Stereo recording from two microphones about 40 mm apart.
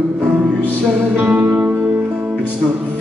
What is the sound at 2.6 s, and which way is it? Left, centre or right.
Music, right.